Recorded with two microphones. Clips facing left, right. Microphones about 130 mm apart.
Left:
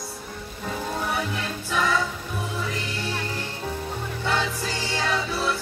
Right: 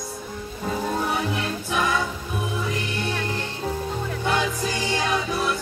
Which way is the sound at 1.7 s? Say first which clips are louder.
Even; 15° right (ahead or behind).